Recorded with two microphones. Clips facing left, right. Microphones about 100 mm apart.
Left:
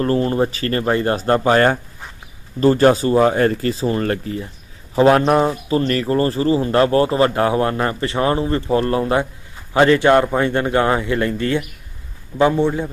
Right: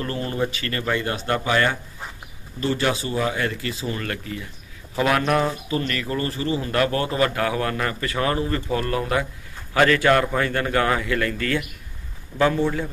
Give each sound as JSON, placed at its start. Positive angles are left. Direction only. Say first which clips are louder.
{"t": 0.0, "sound": "a man's voice", "louder": "left 8 dB", "side_deg": 35}